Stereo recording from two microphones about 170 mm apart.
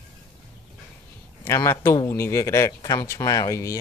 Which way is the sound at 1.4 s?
15° left (ahead or behind).